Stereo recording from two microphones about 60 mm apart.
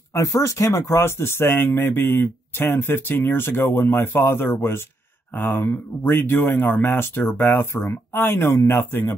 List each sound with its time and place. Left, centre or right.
0.1 s speech: left